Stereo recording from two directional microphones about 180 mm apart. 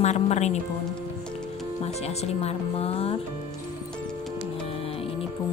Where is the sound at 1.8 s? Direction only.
35° left (ahead or behind).